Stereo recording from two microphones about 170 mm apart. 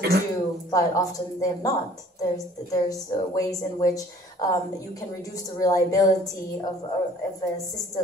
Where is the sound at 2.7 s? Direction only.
20° left (ahead or behind).